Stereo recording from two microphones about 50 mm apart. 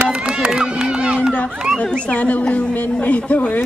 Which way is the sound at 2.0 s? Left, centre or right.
Left.